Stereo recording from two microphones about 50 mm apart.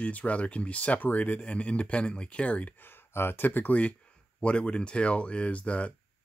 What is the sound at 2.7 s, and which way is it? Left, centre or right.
Speech, left.